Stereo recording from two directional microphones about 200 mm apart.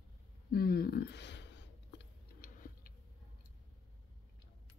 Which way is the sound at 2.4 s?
45° left (ahead or behind).